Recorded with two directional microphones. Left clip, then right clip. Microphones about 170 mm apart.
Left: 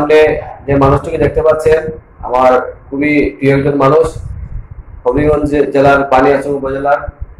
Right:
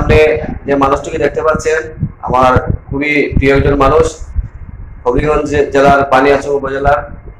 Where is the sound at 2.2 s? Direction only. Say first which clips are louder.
Left 1 dB; 10° right (ahead or behind).